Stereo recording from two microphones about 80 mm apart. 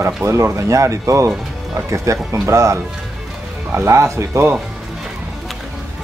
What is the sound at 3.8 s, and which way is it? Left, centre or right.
Speech, right.